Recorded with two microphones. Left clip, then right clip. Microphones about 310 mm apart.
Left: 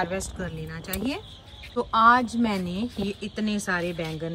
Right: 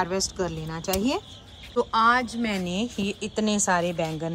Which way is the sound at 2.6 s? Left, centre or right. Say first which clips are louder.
Right 2 dB; centre.